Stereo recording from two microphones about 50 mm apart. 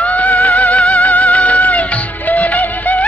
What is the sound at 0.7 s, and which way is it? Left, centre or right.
Music, centre.